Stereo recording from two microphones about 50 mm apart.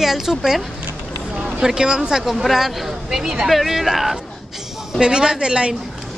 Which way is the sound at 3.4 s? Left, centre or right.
Centre.